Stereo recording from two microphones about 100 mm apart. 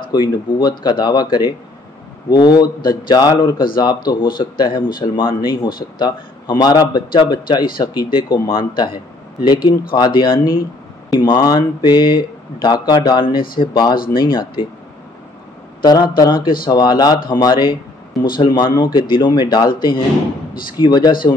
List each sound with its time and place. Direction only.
0.1 s speech: 45° left (ahead or behind)
15.8 s speech: 45° left (ahead or behind)